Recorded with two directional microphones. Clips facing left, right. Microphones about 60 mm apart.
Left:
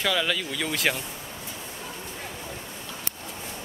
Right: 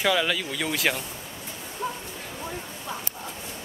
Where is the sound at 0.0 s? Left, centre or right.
Centre.